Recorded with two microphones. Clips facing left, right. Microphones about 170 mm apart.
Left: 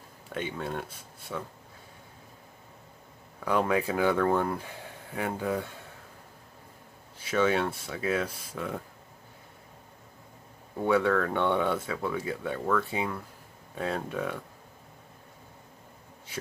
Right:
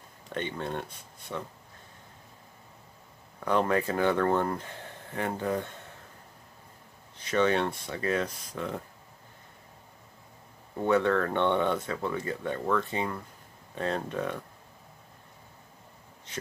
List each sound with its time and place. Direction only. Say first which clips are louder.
0.3 s speech: even; 5° left (ahead or behind)
3.4 s speech: even; 5° left (ahead or behind)
7.2 s speech: even; 5° left (ahead or behind)
10.8 s speech: even; 5° left (ahead or behind)
16.3 s a sound: even; 10° left (ahead or behind)